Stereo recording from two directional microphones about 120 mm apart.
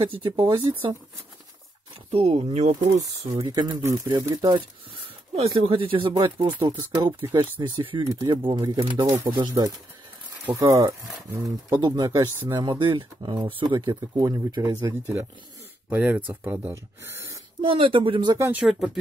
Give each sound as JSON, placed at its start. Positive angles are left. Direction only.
{"t": 0.0, "sound": "speech", "side_deg": -45}
{"t": 2.0, "sound": "speech", "side_deg": -55}
{"t": 2.5, "sound": "speech", "side_deg": -70}
{"t": 3.3, "sound": "speech", "side_deg": -40}
{"t": 3.8, "sound": "speech", "side_deg": -30}
{"t": 5.3, "sound": "speech", "side_deg": -55}
{"t": 8.0, "sound": "speech", "side_deg": -30}
{"t": 8.3, "sound": "speech", "side_deg": -45}
{"t": 8.5, "sound": "speech", "side_deg": -35}
{"t": 10.6, "sound": "speech", "side_deg": -25}
{"t": 14.6, "sound": "speech", "side_deg": -20}
{"t": 17.6, "sound": "speech", "side_deg": -45}
{"t": 18.4, "sound": "speech", "side_deg": -15}